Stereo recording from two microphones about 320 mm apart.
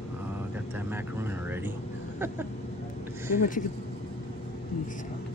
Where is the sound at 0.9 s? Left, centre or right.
Centre.